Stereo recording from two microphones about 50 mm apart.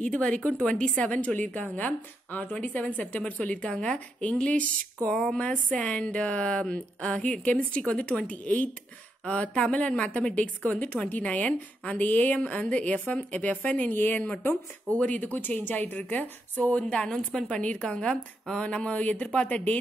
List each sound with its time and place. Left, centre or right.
0.0 s a woman's voice: left
5.2 s a woman's voice: centre
13.9 s a woman's voice: left
14.9 s a woman's voice: left
16.9 s a woman's voice: centre